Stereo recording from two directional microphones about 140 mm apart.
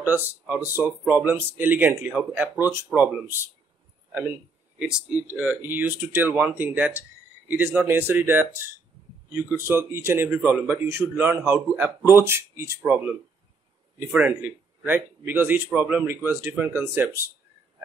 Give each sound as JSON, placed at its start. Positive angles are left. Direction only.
{"t": 0.0, "sound": "speech", "side_deg": -15}
{"t": 4.7, "sound": "speech", "side_deg": -10}